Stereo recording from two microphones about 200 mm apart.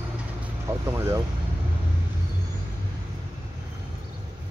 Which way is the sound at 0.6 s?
15° right (ahead or behind).